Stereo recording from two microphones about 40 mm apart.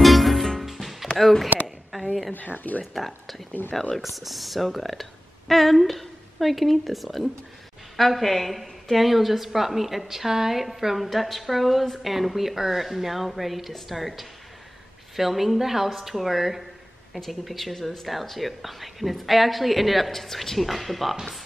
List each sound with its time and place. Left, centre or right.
0.0 s music: centre
2.3 s speech: left
4.0 s a woman's voice: centre